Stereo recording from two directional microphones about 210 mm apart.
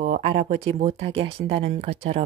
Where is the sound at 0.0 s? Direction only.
35° right (ahead or behind).